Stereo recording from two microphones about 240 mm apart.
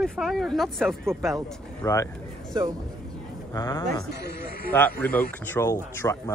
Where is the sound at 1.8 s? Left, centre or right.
Centre.